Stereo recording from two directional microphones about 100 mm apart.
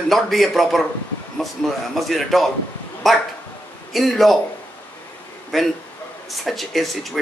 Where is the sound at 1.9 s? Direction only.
Centre (ahead or behind).